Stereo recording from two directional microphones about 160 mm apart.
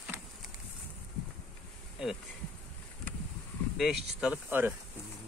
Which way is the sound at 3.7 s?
Centre (ahead or behind).